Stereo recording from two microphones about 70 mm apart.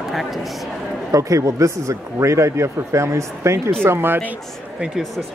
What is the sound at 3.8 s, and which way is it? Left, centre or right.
Speech, right.